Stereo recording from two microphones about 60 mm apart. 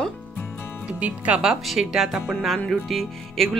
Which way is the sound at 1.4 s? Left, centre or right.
Centre.